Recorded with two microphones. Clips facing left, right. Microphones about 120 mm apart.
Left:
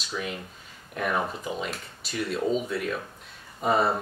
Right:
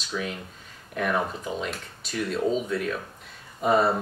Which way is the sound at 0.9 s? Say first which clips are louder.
Right 2 dB; centre (ahead or behind).